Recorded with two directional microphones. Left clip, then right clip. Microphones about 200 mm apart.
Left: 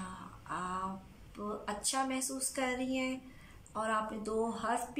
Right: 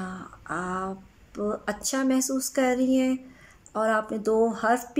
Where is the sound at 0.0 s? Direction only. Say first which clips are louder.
Right 8 dB; 40° right (ahead or behind).